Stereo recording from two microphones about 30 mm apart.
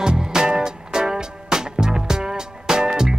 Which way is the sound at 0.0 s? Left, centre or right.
Right.